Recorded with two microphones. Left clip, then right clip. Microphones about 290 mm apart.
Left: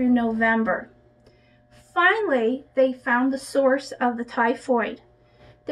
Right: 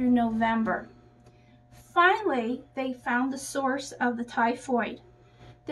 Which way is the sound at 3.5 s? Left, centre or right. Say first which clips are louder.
Left 8 dB; centre.